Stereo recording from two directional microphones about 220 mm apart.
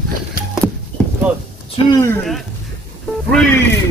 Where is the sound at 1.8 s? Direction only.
25° left (ahead or behind).